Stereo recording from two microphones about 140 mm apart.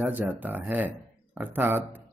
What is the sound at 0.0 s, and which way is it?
A man's voice, 10° right (ahead or behind).